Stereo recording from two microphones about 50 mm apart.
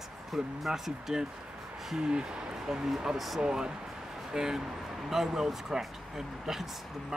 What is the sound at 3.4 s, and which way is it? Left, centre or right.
Speech, centre.